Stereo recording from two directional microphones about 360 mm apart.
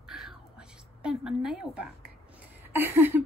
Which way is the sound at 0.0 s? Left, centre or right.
Centre.